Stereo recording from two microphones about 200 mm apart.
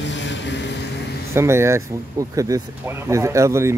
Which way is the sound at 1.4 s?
15° right (ahead or behind).